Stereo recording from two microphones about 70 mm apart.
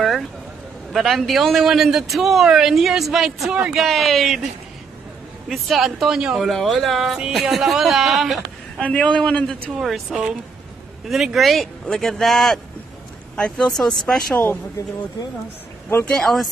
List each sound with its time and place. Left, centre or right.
0.0 s a sound: centre
0.9 s a man's voice: centre
5.5 s a man's voice: centre
8.9 s speech: centre
9.7 s a man's voice: centre
16.2 s a man's voice: centre